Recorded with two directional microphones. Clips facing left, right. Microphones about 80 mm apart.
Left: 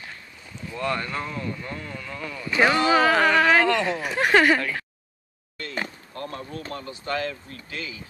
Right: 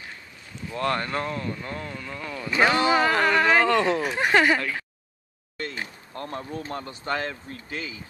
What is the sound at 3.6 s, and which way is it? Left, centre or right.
Speech, right.